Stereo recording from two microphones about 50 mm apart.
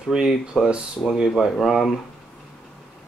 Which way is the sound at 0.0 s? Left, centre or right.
Centre.